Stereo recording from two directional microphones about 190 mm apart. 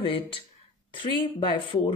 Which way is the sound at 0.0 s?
30° left (ahead or behind).